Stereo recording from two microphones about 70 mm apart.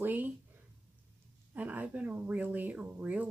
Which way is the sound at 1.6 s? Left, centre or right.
Right.